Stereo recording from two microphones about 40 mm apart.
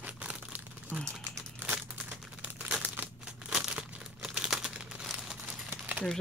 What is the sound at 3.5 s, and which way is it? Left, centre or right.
Crumpling, centre.